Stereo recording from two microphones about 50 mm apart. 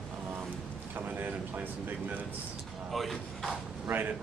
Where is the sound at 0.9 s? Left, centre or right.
Right.